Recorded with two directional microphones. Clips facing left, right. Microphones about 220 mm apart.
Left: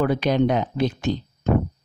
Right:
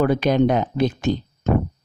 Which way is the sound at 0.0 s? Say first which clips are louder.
Right 2 dB; 50° right (ahead or behind).